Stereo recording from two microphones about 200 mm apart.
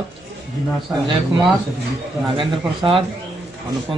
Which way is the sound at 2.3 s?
25° right (ahead or behind).